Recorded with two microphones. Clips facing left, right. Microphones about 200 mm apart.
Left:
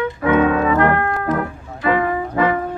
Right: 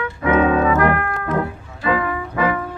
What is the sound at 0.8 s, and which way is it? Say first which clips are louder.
Music: left 2 dB; 30° left (ahead or behind).